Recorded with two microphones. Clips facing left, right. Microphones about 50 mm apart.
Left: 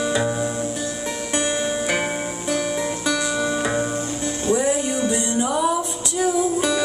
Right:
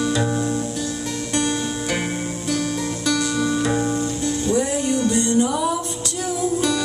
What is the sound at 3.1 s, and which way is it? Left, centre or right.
Music, centre.